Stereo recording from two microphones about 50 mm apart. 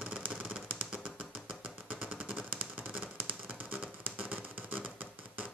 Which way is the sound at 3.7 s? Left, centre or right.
Right.